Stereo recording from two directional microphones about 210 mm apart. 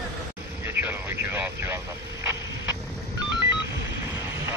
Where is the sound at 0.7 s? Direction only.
10° right (ahead or behind).